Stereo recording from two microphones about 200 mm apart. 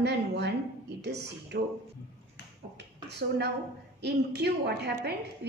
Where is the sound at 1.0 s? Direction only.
55° right (ahead or behind).